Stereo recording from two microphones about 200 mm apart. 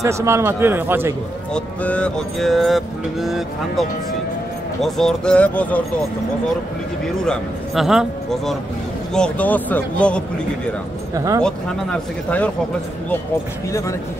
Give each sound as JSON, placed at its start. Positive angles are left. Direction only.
{"t": 0.0, "sound": "a man's voice", "side_deg": -15}
{"t": 1.5, "sound": "speech", "side_deg": 5}
{"t": 4.8, "sound": "speech", "side_deg": 0}
{"t": 7.2, "sound": "a man's voice", "side_deg": 0}
{"t": 11.1, "sound": "a man's voice", "side_deg": -15}
{"t": 11.4, "sound": "speech", "side_deg": 5}
{"t": 13.7, "sound": "a man's voice", "side_deg": 15}